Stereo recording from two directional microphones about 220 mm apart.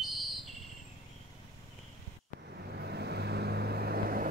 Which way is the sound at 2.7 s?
45° right (ahead or behind).